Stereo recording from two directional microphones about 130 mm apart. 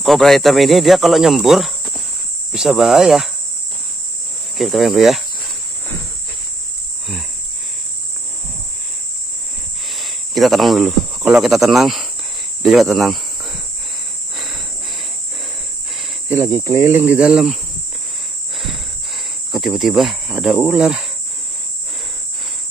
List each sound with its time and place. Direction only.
0.0 s speech: centre (ahead or behind)
2.5 s cricket: 5° right (ahead or behind)
4.6 s cricket: centre (ahead or behind)
9.8 s speech: centre (ahead or behind)
12.6 s cricket: centre (ahead or behind)
16.3 s cricket: 20° right (ahead or behind)
19.5 s cricket: centre (ahead or behind)